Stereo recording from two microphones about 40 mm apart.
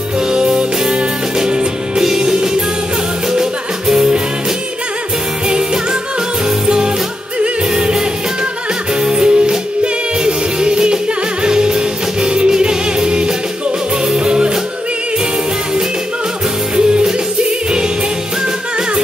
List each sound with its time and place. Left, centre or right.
0.3 s music: right
6.6 s music: right
9.0 s music: right
16.7 s music: right